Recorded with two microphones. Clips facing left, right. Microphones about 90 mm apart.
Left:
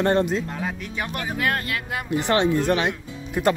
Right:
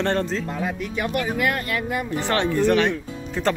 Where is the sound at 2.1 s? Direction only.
20° left (ahead or behind).